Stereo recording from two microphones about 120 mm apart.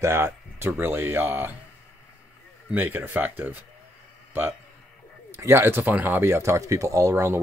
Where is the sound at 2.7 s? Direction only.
15° right (ahead or behind).